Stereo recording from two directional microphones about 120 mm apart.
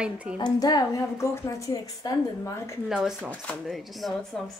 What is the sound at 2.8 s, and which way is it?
Speech, 5° right (ahead or behind).